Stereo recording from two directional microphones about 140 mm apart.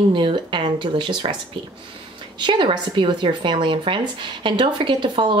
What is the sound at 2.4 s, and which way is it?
A woman's voice, 35° right (ahead or behind).